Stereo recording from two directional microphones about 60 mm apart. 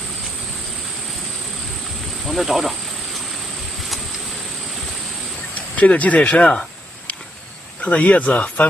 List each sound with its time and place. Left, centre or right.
2.2 s speech: centre
5.5 s speech: left
7.8 s speech: left